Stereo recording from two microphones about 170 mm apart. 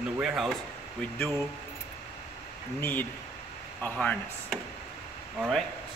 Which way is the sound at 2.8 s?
10° left (ahead or behind).